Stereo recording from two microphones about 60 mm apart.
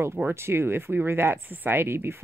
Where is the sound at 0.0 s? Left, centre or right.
Right.